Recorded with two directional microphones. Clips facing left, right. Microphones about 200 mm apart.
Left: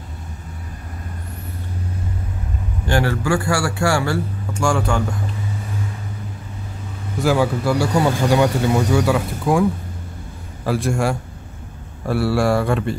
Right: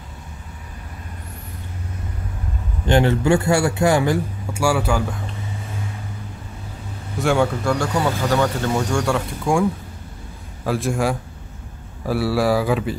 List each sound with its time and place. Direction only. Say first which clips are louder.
2.8 s a man's voice: right 3 dB; 20° right (ahead or behind); by 5.3 s 5° right (ahead or behind)
7.2 s speech: left 1 dB; centre (ahead or behind)